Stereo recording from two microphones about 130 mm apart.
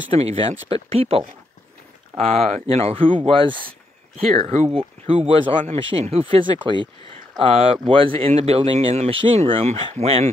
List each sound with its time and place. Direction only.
0.1 s speech: 45° right (ahead or behind)
2.1 s speech: 5° left (ahead or behind)
2.6 s speech: 45° right (ahead or behind)
4.4 s speech: 55° right (ahead or behind)
4.7 s speech: 45° right (ahead or behind)